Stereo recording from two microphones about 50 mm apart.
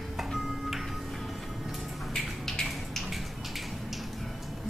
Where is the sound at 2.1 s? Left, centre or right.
Centre.